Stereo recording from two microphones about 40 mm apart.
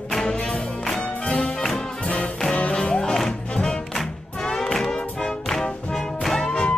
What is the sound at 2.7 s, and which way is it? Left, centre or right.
Music, centre.